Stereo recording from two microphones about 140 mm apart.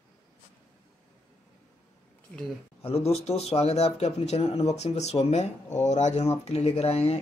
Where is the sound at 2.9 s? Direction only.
45° left (ahead or behind).